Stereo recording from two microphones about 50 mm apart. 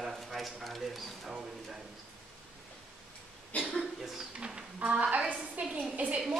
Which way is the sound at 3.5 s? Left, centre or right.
Left.